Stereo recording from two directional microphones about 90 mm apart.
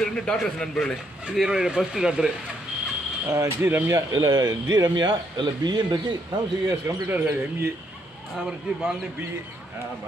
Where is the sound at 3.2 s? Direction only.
35° right (ahead or behind).